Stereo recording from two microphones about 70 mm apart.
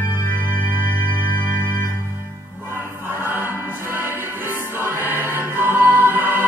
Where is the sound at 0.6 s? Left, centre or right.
Left.